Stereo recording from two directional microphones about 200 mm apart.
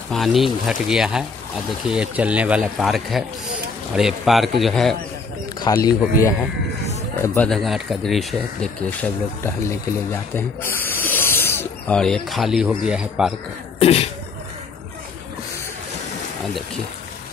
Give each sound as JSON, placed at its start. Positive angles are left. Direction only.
{"t": 0.1, "sound": "speech", "side_deg": 0}
{"t": 5.6, "sound": "speech", "side_deg": 20}
{"t": 7.2, "sound": "speech", "side_deg": 5}
{"t": 10.3, "sound": "speech", "side_deg": 10}
{"t": 13.7, "sound": "sneeze", "side_deg": 30}